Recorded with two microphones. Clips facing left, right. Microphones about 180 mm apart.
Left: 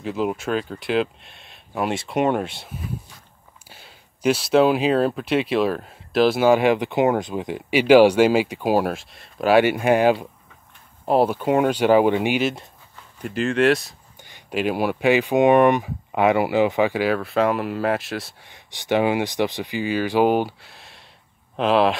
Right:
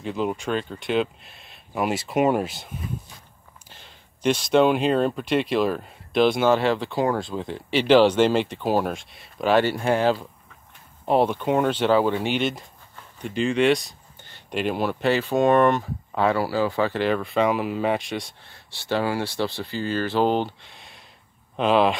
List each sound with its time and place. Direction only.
0.0 s speech: centre (ahead or behind)
12.4 s speech: centre (ahead or behind)
18.5 s speech: 15° left (ahead or behind); by 21.9 s centre (ahead or behind)